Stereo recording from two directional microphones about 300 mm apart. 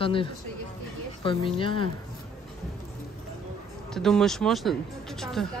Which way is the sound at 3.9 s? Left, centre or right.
Centre.